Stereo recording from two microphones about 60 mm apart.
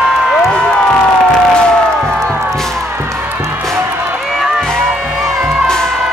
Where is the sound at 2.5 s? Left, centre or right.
Centre.